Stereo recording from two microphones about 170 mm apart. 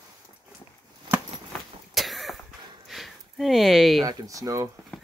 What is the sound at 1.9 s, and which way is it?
Cough, centre (ahead or behind).